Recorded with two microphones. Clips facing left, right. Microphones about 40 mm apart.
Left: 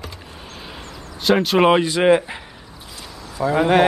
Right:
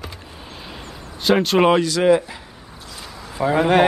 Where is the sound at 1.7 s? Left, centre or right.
Left.